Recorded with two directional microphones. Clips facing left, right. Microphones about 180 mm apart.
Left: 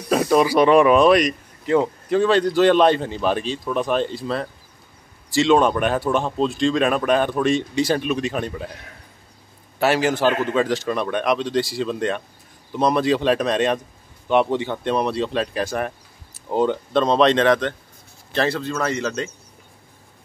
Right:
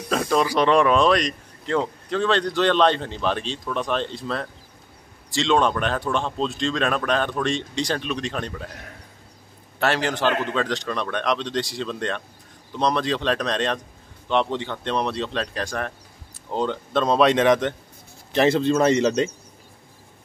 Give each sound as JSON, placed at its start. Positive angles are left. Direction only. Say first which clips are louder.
{"t": 0.1, "sound": "speech", "louder": "left 5 dB", "side_deg": 10}
{"t": 9.8, "sound": "speech", "louder": "left 4 dB", "side_deg": 5}
{"t": 16.9, "sound": "a man's voice", "louder": "left 1 dB", "side_deg": -5}